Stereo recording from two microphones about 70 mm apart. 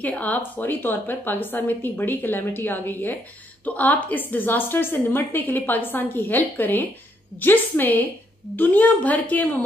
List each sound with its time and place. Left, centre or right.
0.0 s a woman's voice: left